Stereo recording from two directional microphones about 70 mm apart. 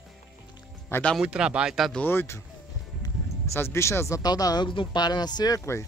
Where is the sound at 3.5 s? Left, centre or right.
Left.